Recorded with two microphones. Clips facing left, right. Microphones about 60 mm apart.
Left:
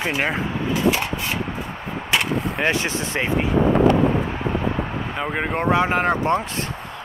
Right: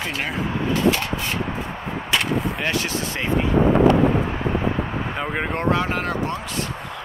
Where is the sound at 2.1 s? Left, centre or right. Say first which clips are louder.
Even; centre.